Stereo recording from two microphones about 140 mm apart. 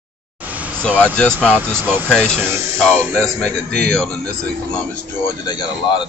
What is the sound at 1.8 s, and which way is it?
Speech, 15° right (ahead or behind).